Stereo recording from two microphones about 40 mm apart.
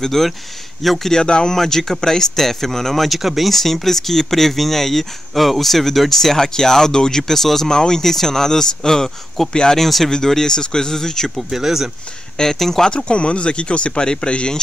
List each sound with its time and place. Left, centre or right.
0.0 s speech: centre
1.1 s speech: left
1.5 s speech: centre
9.8 s speech: centre
11.3 s speech: centre
12.4 s speech: centre
12.9 s speech: left